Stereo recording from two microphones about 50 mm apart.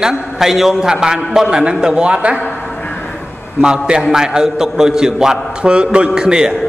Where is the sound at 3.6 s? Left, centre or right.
Centre.